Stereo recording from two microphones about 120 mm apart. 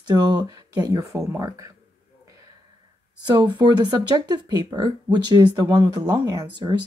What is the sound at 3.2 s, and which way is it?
Speech, 40° right (ahead or behind).